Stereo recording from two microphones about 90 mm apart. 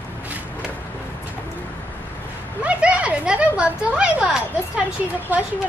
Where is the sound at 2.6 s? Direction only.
15° right (ahead or behind).